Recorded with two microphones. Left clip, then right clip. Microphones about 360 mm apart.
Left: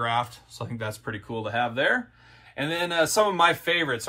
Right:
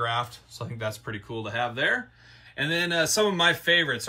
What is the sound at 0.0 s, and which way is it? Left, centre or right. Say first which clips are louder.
Speech: left 2 dB; left.